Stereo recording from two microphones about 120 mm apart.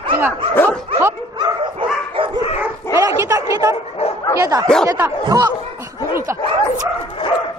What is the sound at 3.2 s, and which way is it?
A woman's voice, 25° right (ahead or behind).